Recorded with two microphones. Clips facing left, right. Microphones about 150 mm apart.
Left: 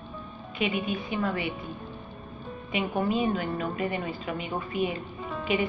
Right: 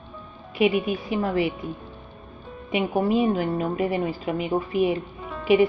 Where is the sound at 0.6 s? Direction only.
5° right (ahead or behind).